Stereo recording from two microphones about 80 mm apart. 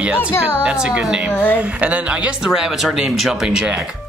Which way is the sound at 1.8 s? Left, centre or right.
Centre.